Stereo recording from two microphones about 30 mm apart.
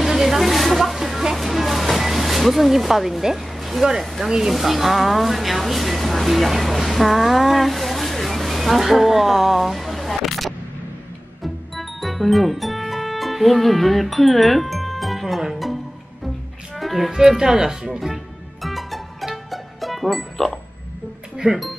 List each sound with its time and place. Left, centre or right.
0.0 s a sound: centre
1.3 s music: centre
3.5 s a sound: centre
4.0 s a woman's voice: centre
11.4 s music: centre
17.1 s speech: centre
17.8 s music: centre
21.4 s speech: right